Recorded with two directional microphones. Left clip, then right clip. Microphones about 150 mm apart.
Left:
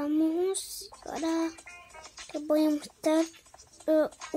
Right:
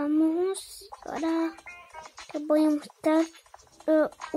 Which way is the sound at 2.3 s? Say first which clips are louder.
Right 3 dB; 10° right (ahead or behind).